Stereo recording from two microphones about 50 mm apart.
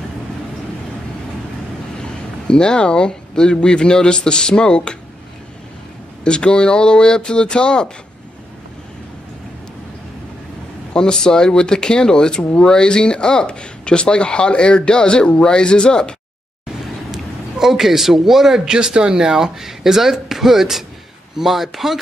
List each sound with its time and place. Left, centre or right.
2.0 s speech: centre
6.2 s speech: centre
10.9 s speech: centre
17.1 s a man's voice: centre
18.8 s speech: centre